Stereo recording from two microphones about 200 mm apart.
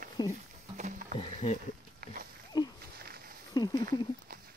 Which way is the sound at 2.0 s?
50° right (ahead or behind).